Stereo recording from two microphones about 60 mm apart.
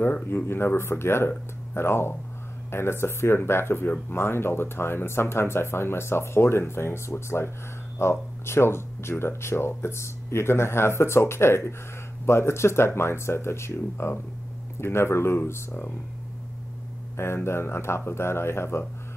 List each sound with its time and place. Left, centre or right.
0.0 s speech: left
17.2 s speech: left